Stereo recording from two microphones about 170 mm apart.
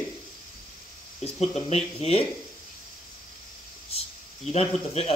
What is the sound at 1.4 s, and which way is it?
Speech, 40° left (ahead or behind).